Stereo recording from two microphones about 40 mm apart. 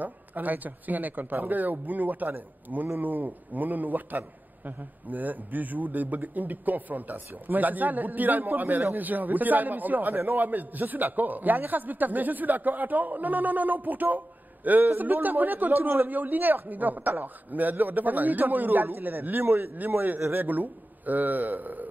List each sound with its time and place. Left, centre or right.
0.0 s a man's voice: right